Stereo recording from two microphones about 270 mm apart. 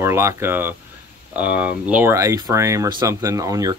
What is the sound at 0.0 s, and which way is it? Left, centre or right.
Speech, centre.